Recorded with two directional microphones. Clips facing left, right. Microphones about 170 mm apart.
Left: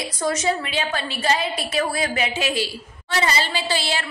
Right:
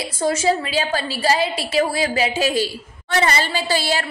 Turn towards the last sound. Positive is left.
turn(degrees=-40)  # may be behind; listen again after turning